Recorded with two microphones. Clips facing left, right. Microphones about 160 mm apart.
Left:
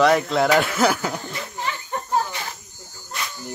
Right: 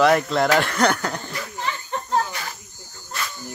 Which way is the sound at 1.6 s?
10° left (ahead or behind).